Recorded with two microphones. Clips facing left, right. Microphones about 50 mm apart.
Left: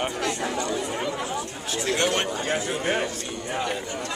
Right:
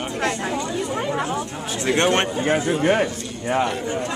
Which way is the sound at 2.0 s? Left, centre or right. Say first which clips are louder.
Right 6 dB; right.